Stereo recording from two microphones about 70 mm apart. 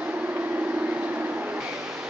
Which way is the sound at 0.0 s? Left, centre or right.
Right.